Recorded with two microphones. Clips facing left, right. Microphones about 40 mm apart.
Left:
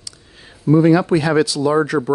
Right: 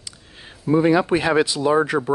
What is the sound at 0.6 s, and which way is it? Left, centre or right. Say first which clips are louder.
Speech: left 4 dB; centre.